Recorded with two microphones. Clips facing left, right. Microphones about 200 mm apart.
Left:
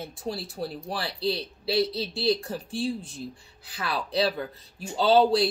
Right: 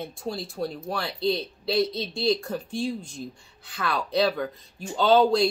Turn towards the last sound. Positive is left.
turn(degrees=30)  # may be behind; listen again after turning